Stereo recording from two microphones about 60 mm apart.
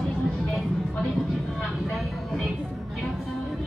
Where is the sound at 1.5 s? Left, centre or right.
Centre.